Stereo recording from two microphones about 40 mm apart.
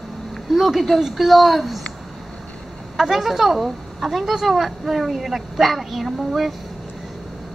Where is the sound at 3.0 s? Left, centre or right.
Centre.